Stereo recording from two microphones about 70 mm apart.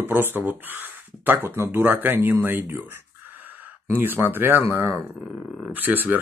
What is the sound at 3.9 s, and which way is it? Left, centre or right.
Speech, right.